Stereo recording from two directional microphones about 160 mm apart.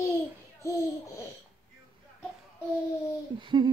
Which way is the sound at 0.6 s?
20° left (ahead or behind).